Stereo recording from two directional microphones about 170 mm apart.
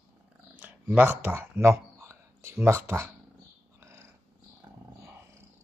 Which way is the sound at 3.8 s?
15° right (ahead or behind).